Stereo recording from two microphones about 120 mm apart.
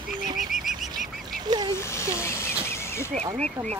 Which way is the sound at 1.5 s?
35° right (ahead or behind).